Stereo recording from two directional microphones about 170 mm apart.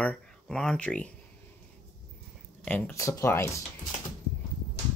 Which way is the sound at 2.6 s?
10° left (ahead or behind).